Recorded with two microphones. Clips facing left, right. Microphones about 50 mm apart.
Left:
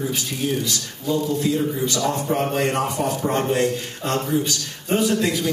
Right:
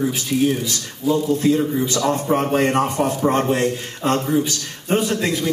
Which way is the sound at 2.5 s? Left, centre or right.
Right.